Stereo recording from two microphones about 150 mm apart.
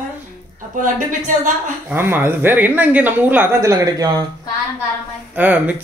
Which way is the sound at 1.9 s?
15° right (ahead or behind).